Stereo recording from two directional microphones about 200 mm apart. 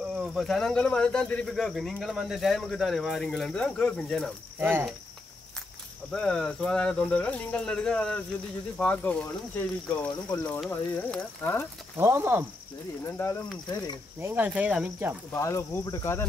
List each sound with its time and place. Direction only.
0.1 s speech: 5° right (ahead or behind)
4.6 s speech: 10° right (ahead or behind)
6.1 s speech: 5° left (ahead or behind)
12.0 s speech: 15° right (ahead or behind)
13.0 s speech: 15° left (ahead or behind)
14.2 s speech: 10° right (ahead or behind)
15.3 s speech: 15° left (ahead or behind)